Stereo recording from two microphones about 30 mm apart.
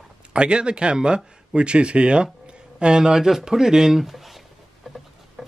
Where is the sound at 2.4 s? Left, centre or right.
Right.